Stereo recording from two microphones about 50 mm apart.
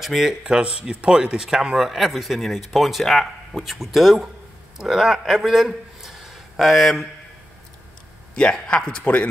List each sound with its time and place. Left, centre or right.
0.0 s a man's voice: centre
8.6 s speech: left